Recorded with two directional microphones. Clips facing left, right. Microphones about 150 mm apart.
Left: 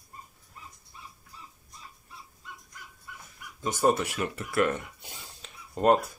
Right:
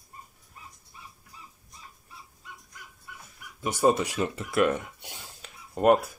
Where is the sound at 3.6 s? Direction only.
15° right (ahead or behind).